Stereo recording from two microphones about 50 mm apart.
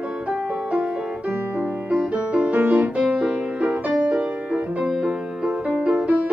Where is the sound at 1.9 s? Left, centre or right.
Right.